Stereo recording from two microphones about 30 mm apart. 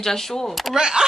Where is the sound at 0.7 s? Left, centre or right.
Right.